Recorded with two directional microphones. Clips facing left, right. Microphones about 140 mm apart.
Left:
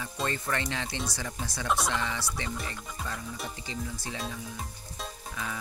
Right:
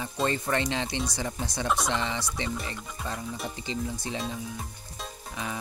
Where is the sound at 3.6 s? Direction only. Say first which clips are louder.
Right 4 dB; 25° right (ahead or behind).